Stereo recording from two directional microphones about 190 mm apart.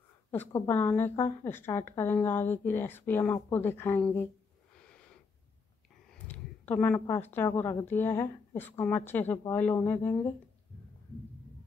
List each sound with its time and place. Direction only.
0.3 s a woman's voice: 10° left (ahead or behind)
4.8 s wheeze: 5° left (ahead or behind)
6.1 s a woman's voice: 10° left (ahead or behind)